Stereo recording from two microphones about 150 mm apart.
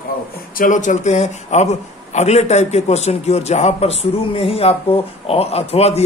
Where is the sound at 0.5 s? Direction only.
60° left (ahead or behind).